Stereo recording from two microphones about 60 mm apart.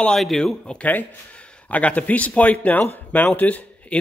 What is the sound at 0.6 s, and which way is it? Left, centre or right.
Speech, centre.